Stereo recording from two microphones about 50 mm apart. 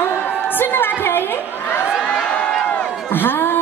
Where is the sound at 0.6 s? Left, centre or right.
Left.